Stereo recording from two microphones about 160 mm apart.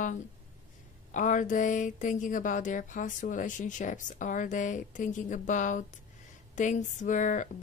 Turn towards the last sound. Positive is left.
turn(degrees=50)  # may be behind; listen again after turning